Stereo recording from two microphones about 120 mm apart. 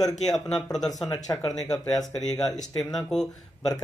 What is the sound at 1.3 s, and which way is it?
Speech, 20° left (ahead or behind).